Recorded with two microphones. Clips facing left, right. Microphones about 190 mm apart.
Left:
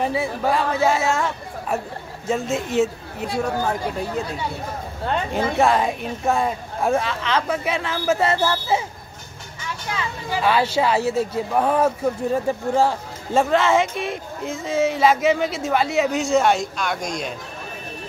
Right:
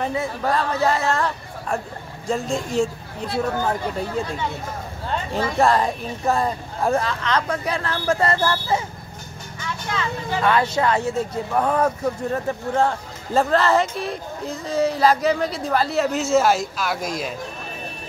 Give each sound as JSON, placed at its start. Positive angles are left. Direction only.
{"t": 0.0, "sound": "speech", "side_deg": 10}
{"t": 5.6, "sound": "speech", "side_deg": 0}
{"t": 9.9, "sound": "speech", "side_deg": 10}